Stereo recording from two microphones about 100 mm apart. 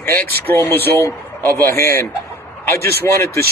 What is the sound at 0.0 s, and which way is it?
Speech, 20° left (ahead or behind).